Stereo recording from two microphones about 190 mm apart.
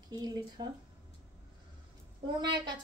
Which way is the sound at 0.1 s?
20° right (ahead or behind).